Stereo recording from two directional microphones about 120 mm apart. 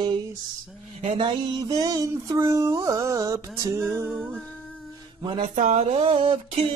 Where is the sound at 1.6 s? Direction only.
30° right (ahead or behind).